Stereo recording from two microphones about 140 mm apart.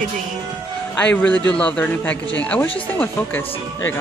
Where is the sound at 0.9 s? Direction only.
10° left (ahead or behind).